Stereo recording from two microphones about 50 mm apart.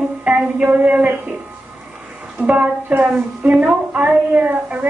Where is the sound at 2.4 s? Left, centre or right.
Right.